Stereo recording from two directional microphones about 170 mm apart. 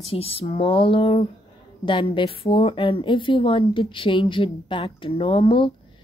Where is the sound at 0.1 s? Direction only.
35° left (ahead or behind).